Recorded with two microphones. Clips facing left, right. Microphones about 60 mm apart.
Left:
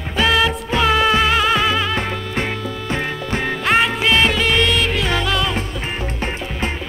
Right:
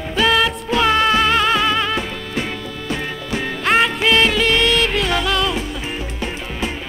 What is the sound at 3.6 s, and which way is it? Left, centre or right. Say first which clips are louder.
Music: right 1 dB; centre.